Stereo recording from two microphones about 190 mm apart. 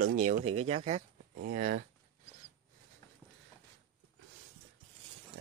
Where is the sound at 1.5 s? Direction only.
45° right (ahead or behind).